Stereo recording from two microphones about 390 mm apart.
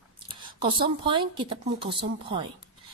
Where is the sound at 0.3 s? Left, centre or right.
Centre.